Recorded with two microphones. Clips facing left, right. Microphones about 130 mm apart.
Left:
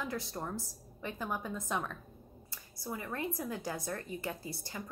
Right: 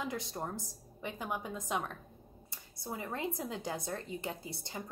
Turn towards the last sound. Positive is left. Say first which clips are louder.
# even
turn(degrees=-20)  # may be behind; listen again after turning